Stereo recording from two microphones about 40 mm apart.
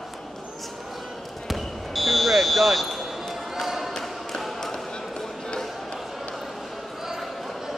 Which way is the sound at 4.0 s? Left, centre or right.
Centre.